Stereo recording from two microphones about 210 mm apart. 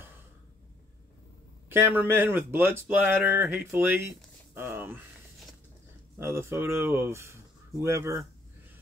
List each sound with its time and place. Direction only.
1.7 s speech: 10° right (ahead or behind)
6.1 s speech: 10° right (ahead or behind)